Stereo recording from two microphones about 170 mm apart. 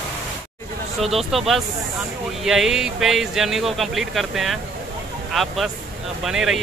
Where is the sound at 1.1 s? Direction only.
Centre (ahead or behind).